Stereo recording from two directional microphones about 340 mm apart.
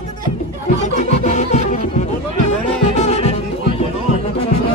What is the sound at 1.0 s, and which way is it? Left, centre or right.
Music, centre.